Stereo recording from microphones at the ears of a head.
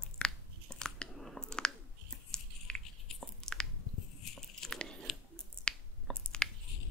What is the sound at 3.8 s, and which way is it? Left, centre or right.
Biting, left.